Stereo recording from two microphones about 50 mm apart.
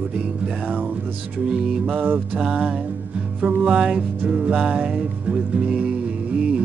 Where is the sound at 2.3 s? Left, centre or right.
Right.